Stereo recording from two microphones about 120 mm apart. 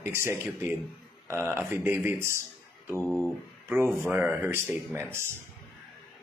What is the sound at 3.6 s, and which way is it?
Speech, 20° right (ahead or behind).